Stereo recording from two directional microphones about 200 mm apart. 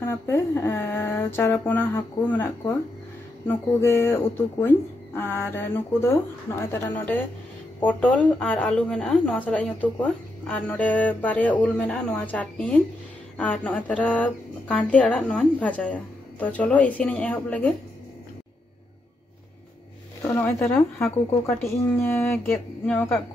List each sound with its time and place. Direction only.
0.0 s a woman's voice: 10° left (ahead or behind)
20.2 s a woman's voice: 10° left (ahead or behind)